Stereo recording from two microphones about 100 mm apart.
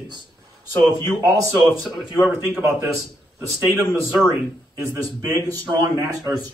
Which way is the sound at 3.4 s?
30° right (ahead or behind).